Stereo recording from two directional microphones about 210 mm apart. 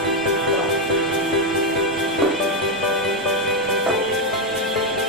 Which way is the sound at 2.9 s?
Centre (ahead or behind).